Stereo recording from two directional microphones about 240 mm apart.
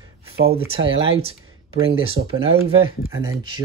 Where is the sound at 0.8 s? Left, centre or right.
Right.